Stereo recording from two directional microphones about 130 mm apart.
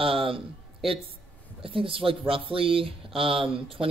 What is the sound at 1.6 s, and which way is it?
Speech, 45° right (ahead or behind).